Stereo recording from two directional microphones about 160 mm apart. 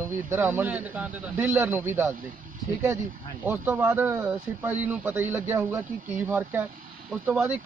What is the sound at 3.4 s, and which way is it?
Speech, 10° right (ahead or behind).